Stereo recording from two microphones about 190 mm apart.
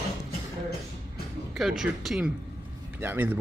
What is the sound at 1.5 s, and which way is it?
A man's voice, centre (ahead or behind).